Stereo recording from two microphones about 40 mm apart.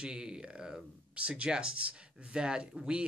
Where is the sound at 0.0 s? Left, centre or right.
Right.